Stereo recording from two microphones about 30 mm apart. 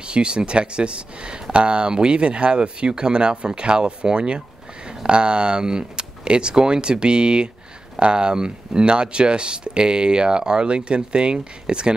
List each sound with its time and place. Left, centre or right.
0.0 s speech: right